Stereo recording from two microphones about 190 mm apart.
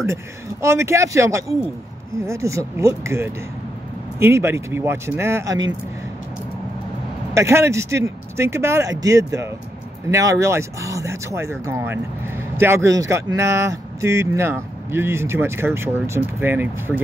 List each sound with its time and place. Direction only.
0.0 s speech: 15° right (ahead or behind)
7.3 s speech: 15° right (ahead or behind)